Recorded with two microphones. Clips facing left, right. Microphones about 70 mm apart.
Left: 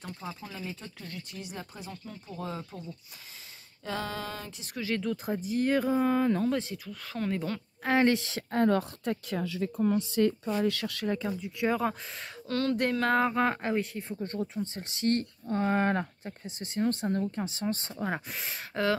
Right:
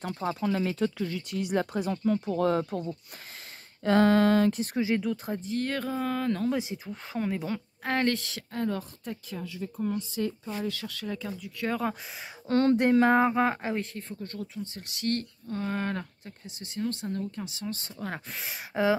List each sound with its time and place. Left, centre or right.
0.0 s speech: right
3.8 s a sound: right
4.7 s speech: centre
5.0 s speech: centre
7.2 s speech: centre
7.9 s speech: centre
8.5 s speech: left
11.1 s speech: left
11.6 s speech: centre
12.4 s speech: right; by 13.8 s centre
14.2 s speech: left
17.9 s speech: centre
18.3 s speech: centre